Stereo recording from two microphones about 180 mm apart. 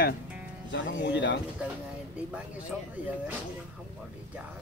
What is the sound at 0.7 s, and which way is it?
Speech, 85° left.